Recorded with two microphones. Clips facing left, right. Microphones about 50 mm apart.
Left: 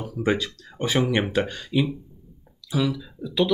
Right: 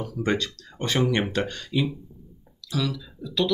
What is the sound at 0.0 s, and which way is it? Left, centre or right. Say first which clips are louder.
Speech: left 2 dB; centre.